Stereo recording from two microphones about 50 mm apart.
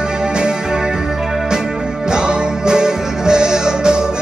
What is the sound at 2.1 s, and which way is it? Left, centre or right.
Music, centre.